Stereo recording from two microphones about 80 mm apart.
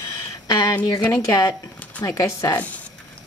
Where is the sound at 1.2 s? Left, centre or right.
Left.